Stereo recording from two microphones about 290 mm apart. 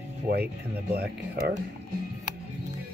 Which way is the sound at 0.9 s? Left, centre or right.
Right.